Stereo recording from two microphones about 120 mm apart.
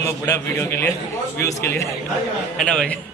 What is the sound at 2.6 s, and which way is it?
Speech, 10° left (ahead or behind).